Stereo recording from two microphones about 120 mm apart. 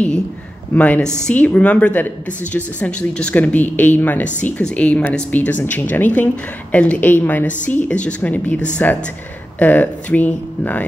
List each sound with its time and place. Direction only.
0.7 s a woman's voice: 10° left (ahead or behind)